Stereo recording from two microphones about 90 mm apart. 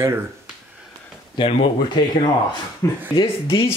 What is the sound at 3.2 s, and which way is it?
Speech, 70° left (ahead or behind).